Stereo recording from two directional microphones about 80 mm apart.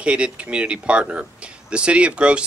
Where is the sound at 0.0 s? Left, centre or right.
Centre.